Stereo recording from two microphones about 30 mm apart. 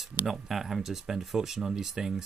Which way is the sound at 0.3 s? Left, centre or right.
Centre.